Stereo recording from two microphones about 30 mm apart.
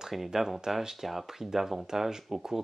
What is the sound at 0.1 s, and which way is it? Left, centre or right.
Speech, centre.